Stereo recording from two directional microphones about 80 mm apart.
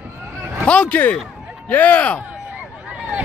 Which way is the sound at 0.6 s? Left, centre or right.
Centre.